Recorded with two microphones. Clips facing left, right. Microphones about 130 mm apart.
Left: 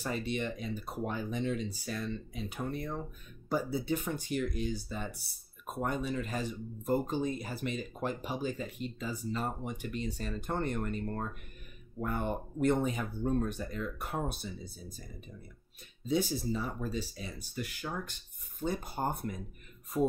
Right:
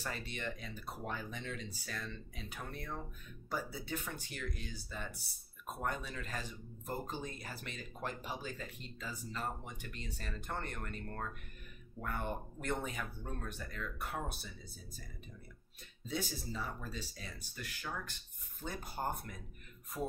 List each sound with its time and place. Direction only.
0.0 s speech: 20° left (ahead or behind)
16.1 s speech: 15° left (ahead or behind)